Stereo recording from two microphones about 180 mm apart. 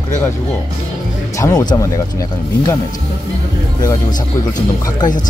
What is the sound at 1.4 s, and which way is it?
Speech, 20° left (ahead or behind).